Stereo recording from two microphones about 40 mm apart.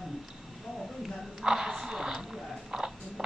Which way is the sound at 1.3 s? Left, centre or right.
Centre.